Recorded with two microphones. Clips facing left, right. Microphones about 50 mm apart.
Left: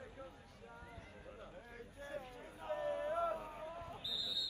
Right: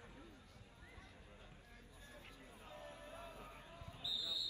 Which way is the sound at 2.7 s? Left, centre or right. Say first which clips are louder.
Left 16 dB; left.